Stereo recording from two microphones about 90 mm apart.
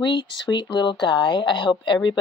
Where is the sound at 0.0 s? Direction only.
60° left (ahead or behind).